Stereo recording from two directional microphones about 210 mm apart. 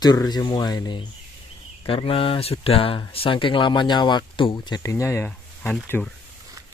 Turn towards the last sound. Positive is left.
turn(degrees=5)  # may be behind; listen again after turning